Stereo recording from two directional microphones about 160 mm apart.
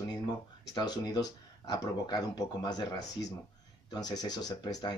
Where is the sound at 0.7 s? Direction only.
25° left (ahead or behind).